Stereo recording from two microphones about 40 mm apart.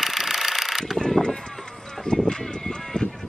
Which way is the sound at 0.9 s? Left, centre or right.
Centre.